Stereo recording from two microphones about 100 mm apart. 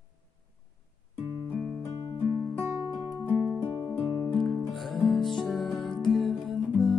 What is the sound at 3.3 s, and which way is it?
Music, 20° right (ahead or behind).